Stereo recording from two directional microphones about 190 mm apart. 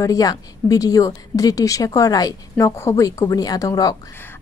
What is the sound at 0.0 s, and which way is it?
Speech, 20° left (ahead or behind).